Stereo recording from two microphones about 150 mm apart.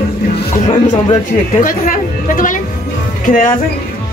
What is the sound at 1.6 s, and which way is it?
Chatter, 65° left (ahead or behind).